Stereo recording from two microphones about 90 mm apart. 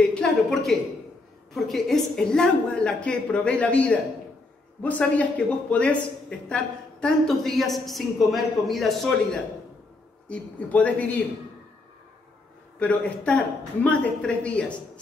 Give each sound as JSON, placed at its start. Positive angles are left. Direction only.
{"t": 0.1, "sound": "a woman's voice", "side_deg": 5}
{"t": 10.2, "sound": "a woman's voice", "side_deg": 15}
{"t": 12.7, "sound": "a woman's voice", "side_deg": 15}